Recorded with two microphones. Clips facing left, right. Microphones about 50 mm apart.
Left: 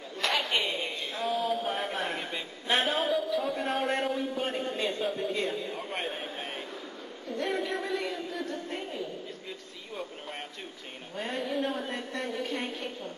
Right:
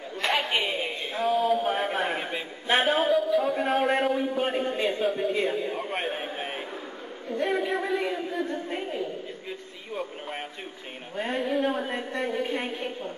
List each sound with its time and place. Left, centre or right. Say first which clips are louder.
0.3 s a sound: right 3 dB; centre
4.2 s a man's voice: right 5 dB; centre
11.1 s a man's voice: right 5 dB; centre